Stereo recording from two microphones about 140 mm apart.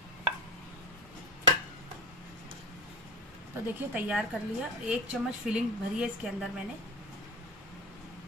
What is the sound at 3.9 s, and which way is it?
A woman's voice, 5° right (ahead or behind).